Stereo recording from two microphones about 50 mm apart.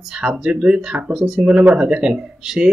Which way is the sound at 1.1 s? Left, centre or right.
Centre.